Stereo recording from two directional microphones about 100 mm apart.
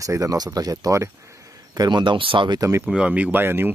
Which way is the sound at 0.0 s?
35° right (ahead or behind).